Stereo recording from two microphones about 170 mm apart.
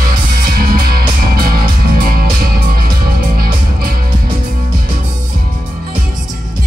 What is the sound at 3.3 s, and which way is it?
Music, 60° right (ahead or behind).